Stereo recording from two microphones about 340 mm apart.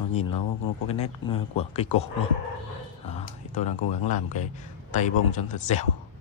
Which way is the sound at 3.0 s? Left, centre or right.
Left.